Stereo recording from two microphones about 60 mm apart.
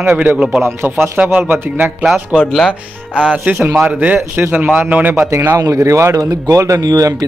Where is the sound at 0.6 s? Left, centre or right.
Right.